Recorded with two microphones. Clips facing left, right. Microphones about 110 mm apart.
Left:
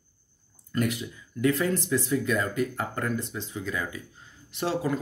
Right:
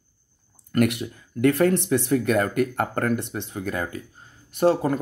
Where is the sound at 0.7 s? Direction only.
65° right (ahead or behind).